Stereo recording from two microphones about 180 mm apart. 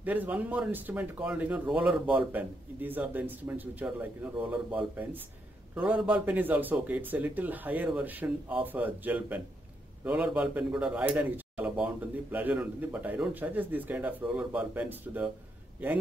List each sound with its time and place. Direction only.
0.0 s a man's voice: 10° right (ahead or behind)